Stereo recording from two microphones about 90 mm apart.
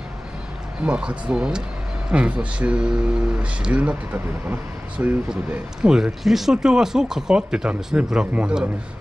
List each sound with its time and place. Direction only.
0.8 s speech: 10° right (ahead or behind)
5.3 s speech: 5° right (ahead or behind)